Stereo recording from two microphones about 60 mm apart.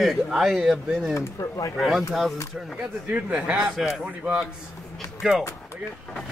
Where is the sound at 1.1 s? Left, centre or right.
Left.